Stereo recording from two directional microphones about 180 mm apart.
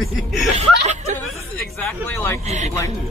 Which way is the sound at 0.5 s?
40° right (ahead or behind).